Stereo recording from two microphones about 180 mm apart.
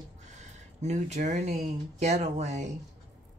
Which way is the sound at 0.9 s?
40° right (ahead or behind).